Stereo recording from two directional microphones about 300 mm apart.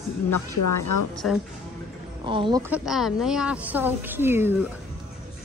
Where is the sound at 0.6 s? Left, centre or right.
Left.